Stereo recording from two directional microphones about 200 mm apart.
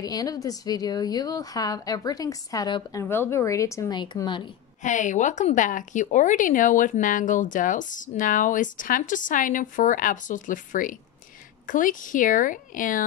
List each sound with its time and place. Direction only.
0.0 s a woman's voice: 20° left (ahead or behind)
4.8 s speech: 40° left (ahead or behind)